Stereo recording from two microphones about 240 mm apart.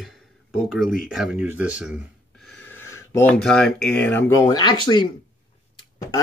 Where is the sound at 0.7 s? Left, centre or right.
Centre.